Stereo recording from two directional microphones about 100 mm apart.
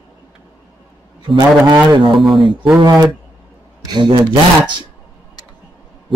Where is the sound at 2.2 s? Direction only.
Centre (ahead or behind).